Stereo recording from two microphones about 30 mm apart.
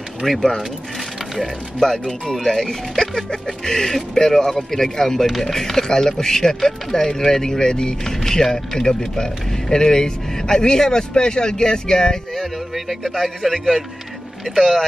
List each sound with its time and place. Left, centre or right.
0.2 s speech: centre
1.8 s speech: centre
12.4 s a sound: centre